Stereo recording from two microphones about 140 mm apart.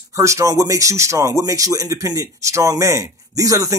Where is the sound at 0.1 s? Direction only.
20° right (ahead or behind).